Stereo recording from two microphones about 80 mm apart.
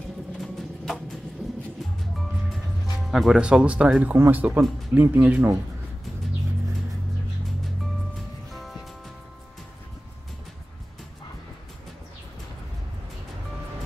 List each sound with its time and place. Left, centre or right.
0.4 s a sound: centre
3.1 s speech: centre; by 5.5 s right
8.5 s music: centre